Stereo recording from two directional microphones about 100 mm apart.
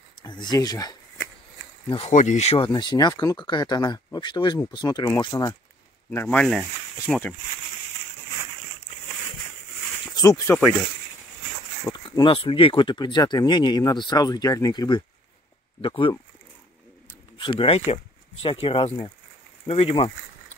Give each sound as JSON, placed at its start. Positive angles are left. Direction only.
{"t": 0.2, "sound": "speech", "side_deg": 45}
{"t": 1.9, "sound": "speech", "side_deg": 75}
{"t": 2.7, "sound": "speech", "side_deg": 50}
{"t": 6.0, "sound": "speech", "side_deg": 15}
{"t": 10.1, "sound": "speech", "side_deg": 35}
{"t": 11.9, "sound": "speech", "side_deg": 55}
{"t": 15.8, "sound": "speech", "side_deg": 60}
{"t": 17.4, "sound": "speech", "side_deg": 60}